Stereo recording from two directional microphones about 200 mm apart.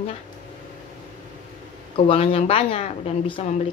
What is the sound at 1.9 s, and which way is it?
Speech, 30° left (ahead or behind).